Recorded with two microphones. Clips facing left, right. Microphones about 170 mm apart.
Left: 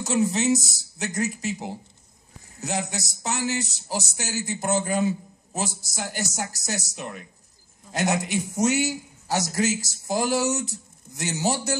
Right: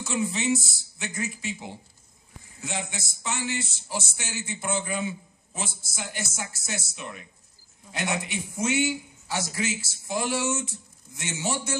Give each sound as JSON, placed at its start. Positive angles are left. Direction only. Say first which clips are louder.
{"t": 0.0, "sound": "speech", "louder": "left 5 dB", "side_deg": 40}